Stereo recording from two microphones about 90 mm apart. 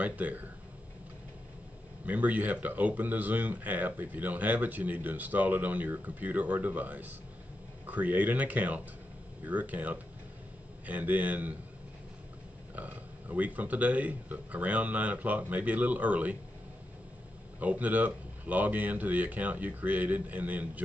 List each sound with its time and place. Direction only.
0.0 s speech: 15° right (ahead or behind)
2.0 s speech: 15° right (ahead or behind)
12.7 s speech: 15° right (ahead or behind)
17.6 s speech: 15° right (ahead or behind)